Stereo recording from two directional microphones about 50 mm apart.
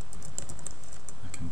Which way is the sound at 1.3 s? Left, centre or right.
Centre.